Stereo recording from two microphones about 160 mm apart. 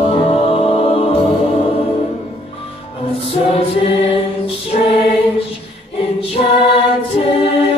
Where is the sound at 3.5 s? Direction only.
35° left (ahead or behind).